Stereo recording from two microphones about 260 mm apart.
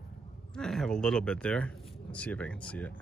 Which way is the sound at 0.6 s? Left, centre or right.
Centre.